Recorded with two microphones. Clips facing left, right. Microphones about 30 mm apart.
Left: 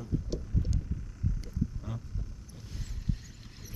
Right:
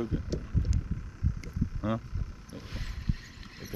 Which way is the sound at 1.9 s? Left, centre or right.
Right.